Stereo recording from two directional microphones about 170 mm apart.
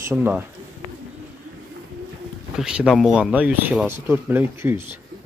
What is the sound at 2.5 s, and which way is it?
Speech, 5° right (ahead or behind).